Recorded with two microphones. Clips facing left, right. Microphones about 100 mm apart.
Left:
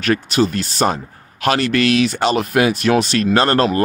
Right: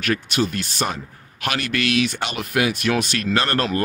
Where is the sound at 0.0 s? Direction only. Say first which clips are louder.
Left 5 dB; 35° left (ahead or behind).